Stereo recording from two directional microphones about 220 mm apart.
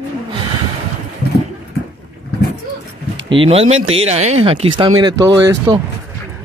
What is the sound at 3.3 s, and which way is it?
Speech, 25° right (ahead or behind).